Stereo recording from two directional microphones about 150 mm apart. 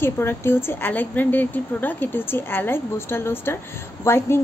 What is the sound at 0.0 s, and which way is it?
A woman's voice, 15° left (ahead or behind).